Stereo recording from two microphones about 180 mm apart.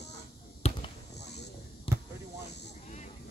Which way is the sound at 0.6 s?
35° left (ahead or behind).